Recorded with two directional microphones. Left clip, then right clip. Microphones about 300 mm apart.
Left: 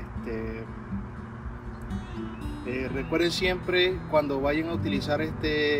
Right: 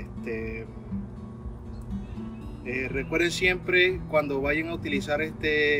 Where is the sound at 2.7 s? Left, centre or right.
Centre.